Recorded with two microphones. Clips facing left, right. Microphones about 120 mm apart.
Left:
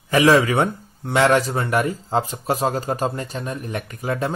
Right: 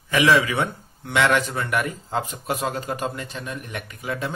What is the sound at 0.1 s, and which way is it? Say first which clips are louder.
Speech: left 4 dB; 40° left (ahead or behind).